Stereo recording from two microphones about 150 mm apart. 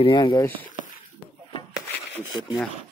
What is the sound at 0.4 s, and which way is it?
Speech, 10° left (ahead or behind).